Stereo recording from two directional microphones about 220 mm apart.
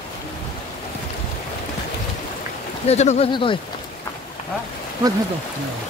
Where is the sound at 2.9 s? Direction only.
30° left (ahead or behind).